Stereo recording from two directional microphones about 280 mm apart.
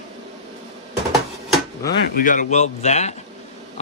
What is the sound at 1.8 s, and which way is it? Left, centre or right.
A man's voice, left.